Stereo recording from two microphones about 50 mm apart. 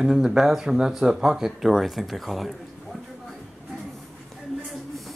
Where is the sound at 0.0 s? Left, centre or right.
Centre.